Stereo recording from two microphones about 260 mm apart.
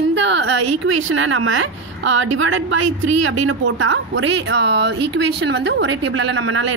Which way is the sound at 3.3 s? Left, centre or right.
Right.